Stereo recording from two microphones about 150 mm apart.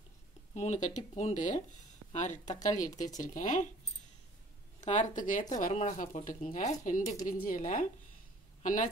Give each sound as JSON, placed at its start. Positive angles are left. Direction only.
{"t": 0.6, "sound": "speech", "side_deg": 50}
{"t": 4.7, "sound": "speech", "side_deg": 55}